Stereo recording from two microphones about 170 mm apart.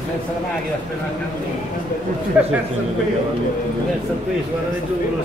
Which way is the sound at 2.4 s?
10° right (ahead or behind).